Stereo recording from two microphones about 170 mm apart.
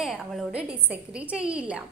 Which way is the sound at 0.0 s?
Centre (ahead or behind).